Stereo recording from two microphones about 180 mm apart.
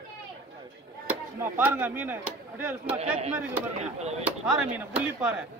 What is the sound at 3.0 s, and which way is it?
Speech, 35° right (ahead or behind).